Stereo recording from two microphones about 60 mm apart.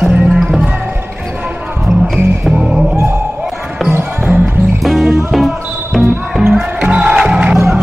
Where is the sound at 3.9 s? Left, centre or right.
Right.